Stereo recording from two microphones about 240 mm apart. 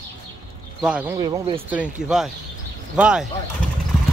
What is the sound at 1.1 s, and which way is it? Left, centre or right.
Speech, centre.